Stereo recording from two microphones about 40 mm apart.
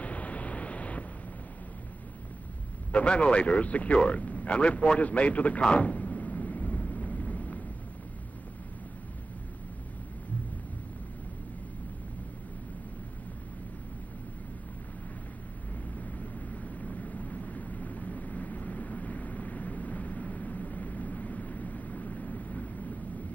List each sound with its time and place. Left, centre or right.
0.0 s a sound: left
2.9 s a man's voice: left
5.6 s vehicle: left
16.0 s vehicle: left